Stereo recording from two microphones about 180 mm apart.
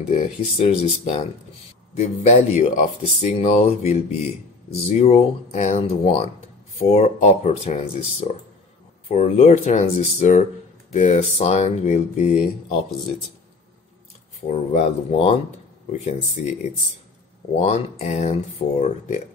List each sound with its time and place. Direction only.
0.6 s speech: 35° left (ahead or behind)
14.5 s speech: 40° left (ahead or behind)
17.6 s speech: 35° left (ahead or behind)